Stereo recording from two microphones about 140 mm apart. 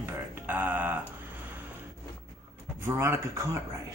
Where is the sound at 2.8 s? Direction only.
20° right (ahead or behind).